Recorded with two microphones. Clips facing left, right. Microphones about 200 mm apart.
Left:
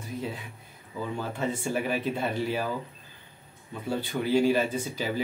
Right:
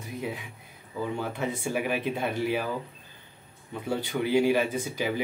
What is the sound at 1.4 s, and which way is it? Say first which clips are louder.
Speech: left 2 dB; 10° right (ahead or behind).